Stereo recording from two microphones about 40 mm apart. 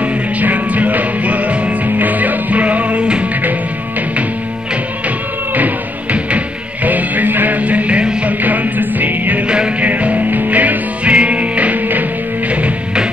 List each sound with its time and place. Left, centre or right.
0.0 s music: right
6.1 s music: right
8.3 s music: right